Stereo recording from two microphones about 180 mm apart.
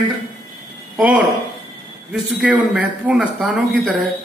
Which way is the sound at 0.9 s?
5° right (ahead or behind).